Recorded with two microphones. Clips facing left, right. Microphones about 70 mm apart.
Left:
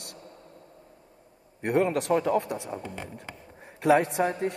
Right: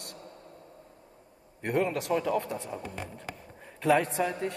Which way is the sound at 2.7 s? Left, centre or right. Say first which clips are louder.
Left 2 dB; left.